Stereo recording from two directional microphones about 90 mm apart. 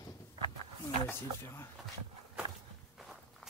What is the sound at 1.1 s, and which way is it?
Speech, 30° left (ahead or behind).